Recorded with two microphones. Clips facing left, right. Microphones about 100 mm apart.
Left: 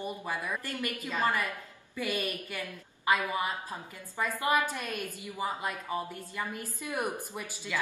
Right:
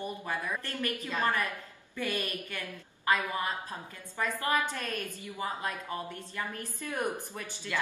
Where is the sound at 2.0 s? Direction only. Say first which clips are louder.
Left 1 dB; 15° left (ahead or behind).